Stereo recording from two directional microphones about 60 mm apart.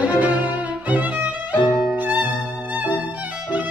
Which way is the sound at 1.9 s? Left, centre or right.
Right.